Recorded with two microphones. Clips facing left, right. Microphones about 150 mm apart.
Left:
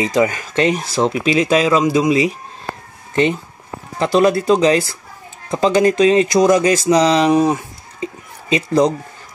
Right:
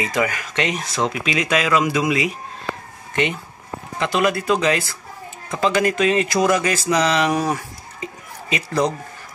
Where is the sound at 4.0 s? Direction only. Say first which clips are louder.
Left 6 dB; 35° left (ahead or behind).